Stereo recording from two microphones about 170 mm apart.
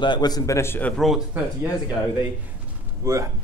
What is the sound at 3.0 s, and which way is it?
Speech, 15° right (ahead or behind).